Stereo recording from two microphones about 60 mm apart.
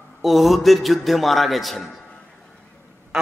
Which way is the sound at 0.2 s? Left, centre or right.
Centre.